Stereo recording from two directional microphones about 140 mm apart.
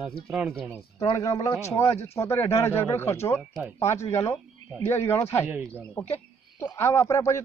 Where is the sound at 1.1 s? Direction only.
25° left (ahead or behind).